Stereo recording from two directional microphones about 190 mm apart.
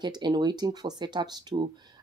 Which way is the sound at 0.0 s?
25° right (ahead or behind).